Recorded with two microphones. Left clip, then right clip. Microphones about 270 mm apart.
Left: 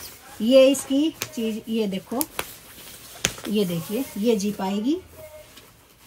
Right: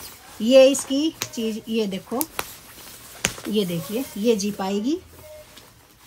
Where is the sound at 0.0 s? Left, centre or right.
Centre.